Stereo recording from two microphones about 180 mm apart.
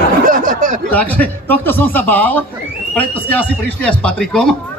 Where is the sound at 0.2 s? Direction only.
50° right (ahead or behind).